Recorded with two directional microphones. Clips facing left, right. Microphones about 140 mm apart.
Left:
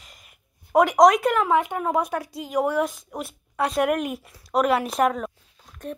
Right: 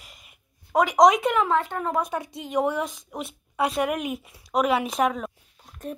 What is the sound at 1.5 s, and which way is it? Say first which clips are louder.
Speech: left 3 dB; 15° left (ahead or behind).